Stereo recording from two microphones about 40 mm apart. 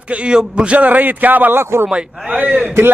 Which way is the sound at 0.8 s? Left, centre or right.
Right.